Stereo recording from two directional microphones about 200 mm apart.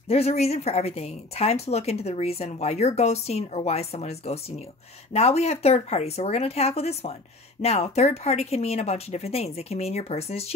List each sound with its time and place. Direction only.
0.1 s speech: 30° left (ahead or behind)